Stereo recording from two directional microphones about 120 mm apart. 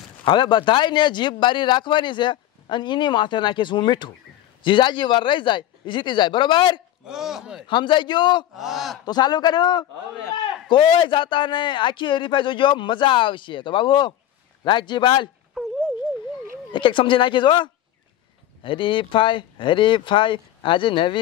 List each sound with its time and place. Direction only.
0.2 s a man's voice: 40° left (ahead or behind)
7.1 s speech: 5° right (ahead or behind)
7.6 s a man's voice: 40° left (ahead or behind)
8.5 s speech: centre (ahead or behind)
9.0 s a man's voice: 35° left (ahead or behind)
16.7 s speech: 45° left (ahead or behind)